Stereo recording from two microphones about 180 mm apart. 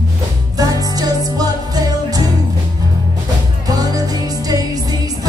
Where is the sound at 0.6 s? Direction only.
20° right (ahead or behind).